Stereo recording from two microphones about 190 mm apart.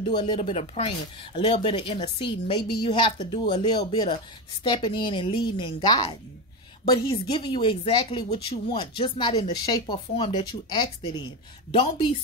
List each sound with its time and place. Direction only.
0.0 s speech: 25° left (ahead or behind)